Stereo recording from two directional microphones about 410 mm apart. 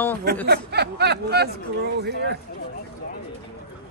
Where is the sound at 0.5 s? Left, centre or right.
Right.